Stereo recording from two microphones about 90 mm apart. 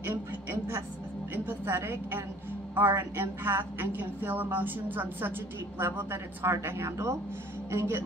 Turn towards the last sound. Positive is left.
turn(degrees=-30)  # may be behind; listen again after turning